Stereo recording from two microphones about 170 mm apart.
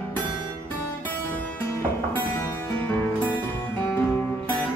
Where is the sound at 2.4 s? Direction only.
20° left (ahead or behind).